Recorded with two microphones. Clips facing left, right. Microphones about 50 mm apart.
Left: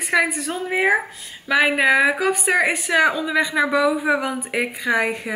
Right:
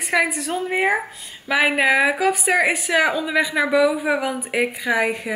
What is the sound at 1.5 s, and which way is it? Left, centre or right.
A woman's voice, centre.